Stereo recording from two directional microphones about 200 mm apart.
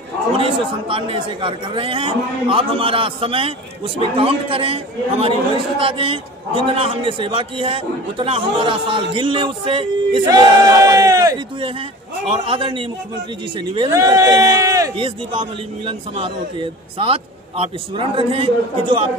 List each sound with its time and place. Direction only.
0.4 s a man's voice: 25° right (ahead or behind)
13.9 s a man's voice: 15° right (ahead or behind)